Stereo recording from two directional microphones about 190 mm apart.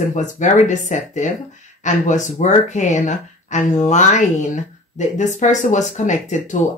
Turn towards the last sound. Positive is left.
turn(degrees=40)  # may be behind; listen again after turning